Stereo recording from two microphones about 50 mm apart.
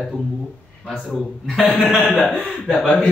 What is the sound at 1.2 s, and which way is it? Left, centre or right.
A man's voice, centre.